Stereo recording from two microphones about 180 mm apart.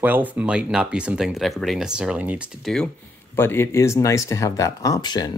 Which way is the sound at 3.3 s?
15° left (ahead or behind).